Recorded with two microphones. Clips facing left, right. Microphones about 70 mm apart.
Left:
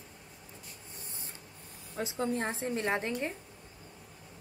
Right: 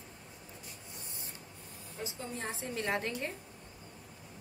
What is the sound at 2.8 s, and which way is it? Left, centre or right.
Speech, left.